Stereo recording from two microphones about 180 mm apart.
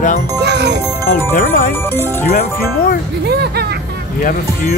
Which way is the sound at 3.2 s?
65° right (ahead or behind).